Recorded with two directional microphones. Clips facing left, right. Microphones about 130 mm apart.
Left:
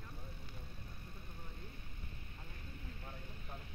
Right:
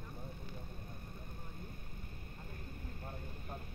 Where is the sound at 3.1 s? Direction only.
45° right (ahead or behind).